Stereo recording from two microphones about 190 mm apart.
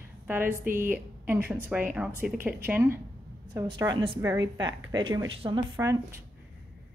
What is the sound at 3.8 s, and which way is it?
A woman's voice, 25° right (ahead or behind).